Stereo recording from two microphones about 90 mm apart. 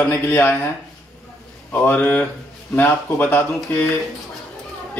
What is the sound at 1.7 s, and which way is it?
A man's voice, 25° left (ahead or behind).